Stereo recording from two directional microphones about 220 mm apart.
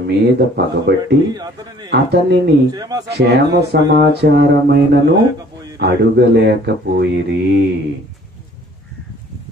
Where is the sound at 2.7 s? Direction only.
15° right (ahead or behind).